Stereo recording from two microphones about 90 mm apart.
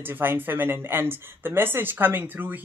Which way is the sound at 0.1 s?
25° right (ahead or behind).